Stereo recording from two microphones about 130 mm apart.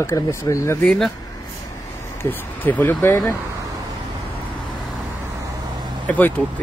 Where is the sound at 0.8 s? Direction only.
5° left (ahead or behind).